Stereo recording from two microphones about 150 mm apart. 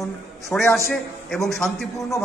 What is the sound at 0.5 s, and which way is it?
A man's voice, 10° left (ahead or behind).